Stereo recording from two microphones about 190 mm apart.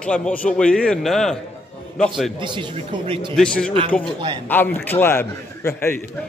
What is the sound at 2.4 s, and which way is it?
Speech, 25° right (ahead or behind).